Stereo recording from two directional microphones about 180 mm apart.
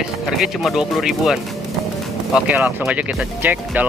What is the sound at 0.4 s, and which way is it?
Speech, centre (ahead or behind).